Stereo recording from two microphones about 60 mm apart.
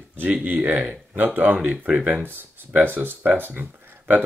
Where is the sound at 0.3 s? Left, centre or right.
Right.